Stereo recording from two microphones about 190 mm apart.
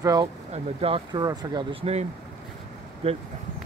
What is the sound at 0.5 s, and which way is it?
Speech, 30° right (ahead or behind).